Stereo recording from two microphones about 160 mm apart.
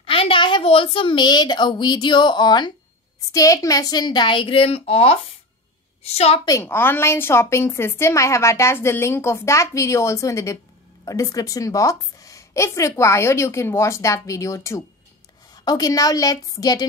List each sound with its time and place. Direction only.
0.0 s a woman's voice: 35° left (ahead or behind)
6.4 s a woman's voice: 15° left (ahead or behind)